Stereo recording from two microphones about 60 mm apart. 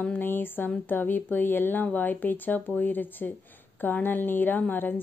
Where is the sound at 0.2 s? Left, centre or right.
Left.